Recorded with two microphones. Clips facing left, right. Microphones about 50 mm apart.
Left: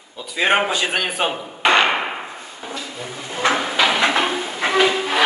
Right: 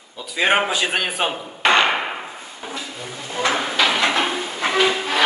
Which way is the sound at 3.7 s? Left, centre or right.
Centre.